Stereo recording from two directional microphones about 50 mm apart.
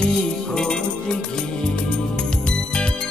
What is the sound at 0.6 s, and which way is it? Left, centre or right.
Music, centre.